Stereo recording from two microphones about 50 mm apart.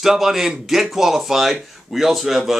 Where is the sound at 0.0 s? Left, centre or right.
Centre.